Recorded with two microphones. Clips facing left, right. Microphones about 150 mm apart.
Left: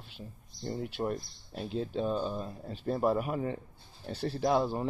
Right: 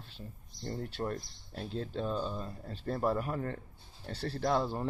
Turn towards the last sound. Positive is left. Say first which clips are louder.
# left 3 dB
turn(degrees=10)  # may be behind; listen again after turning